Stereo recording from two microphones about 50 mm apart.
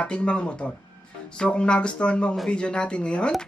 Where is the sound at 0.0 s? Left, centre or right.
Left.